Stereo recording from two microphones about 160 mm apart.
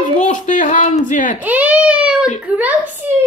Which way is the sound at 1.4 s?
10° right (ahead or behind).